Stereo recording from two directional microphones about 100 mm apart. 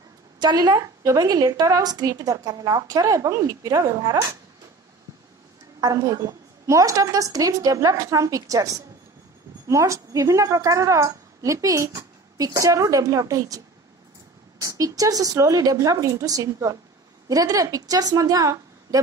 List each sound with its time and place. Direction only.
0.4 s a woman's voice: 45° right (ahead or behind)
5.8 s a woman's voice: 40° right (ahead or behind)
9.7 s a woman's voice: 30° right (ahead or behind)
14.6 s a woman's voice: 35° right (ahead or behind)